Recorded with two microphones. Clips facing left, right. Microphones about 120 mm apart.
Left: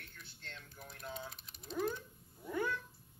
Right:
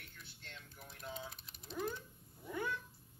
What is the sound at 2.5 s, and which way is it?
Cat, 45° left (ahead or behind).